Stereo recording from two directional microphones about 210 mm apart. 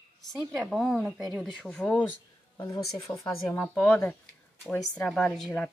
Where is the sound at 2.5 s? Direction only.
15° left (ahead or behind).